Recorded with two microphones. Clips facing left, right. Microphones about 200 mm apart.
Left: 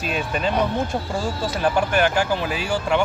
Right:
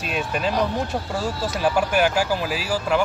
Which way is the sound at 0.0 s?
Centre (ahead or behind).